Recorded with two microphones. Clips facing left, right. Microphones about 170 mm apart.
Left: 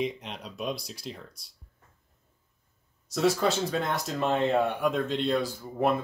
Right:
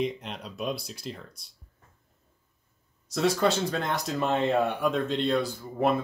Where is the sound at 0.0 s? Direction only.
Centre (ahead or behind).